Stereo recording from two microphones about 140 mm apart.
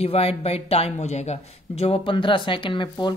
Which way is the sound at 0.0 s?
45° left (ahead or behind).